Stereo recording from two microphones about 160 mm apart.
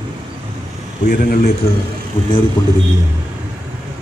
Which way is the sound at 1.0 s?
65° left (ahead or behind).